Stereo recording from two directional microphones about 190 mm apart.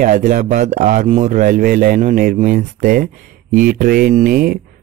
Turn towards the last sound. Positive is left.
turn(degrees=-50)  # may be behind; listen again after turning